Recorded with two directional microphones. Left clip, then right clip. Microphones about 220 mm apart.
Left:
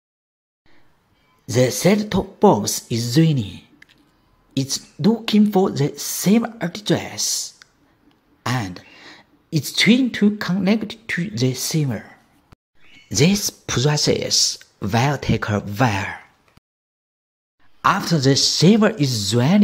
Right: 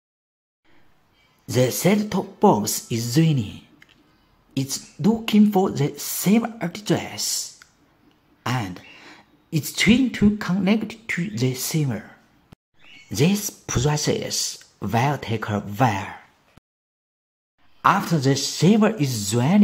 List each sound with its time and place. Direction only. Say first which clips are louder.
1.4 s speech: left 3 dB; 10° left (ahead or behind)
8.4 s throat clearing: left 2 dB; 15° left (ahead or behind)
10.1 s speech: left 2 dB; 15° left (ahead or behind)
17.8 s speech: left 1 dB; 15° left (ahead or behind)